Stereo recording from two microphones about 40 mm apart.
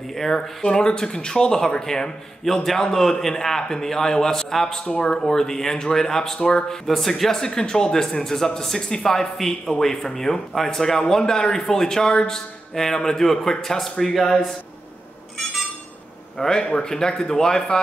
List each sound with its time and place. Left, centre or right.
0.1 s speech: centre
0.4 s speech: centre
6.9 s a man's voice: centre
15.3 s a sound: centre
16.4 s speech: left